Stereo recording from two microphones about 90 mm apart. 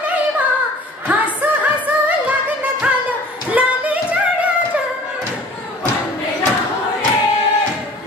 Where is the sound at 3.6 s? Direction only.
15° right (ahead or behind).